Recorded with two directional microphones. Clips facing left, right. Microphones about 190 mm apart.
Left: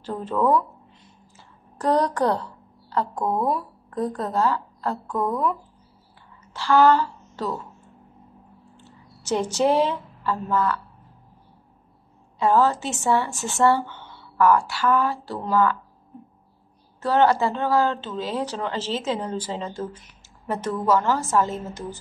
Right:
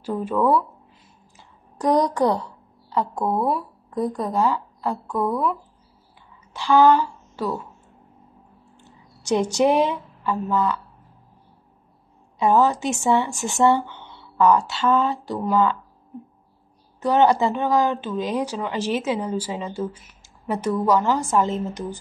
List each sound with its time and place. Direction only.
0.0 s a woman's voice: 10° right (ahead or behind)
1.8 s a woman's voice: 15° right (ahead or behind)
8.7 s a woman's voice: 15° right (ahead or behind)
12.4 s a woman's voice: 15° right (ahead or behind)
17.0 s a woman's voice: 15° right (ahead or behind)